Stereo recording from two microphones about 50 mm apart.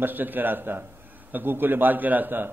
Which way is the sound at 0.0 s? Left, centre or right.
Right.